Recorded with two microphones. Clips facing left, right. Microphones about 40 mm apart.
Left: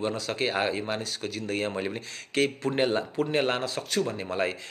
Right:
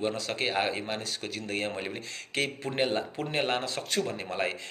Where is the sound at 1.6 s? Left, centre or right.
Centre.